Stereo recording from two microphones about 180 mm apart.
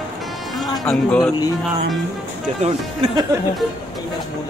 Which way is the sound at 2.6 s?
25° right (ahead or behind).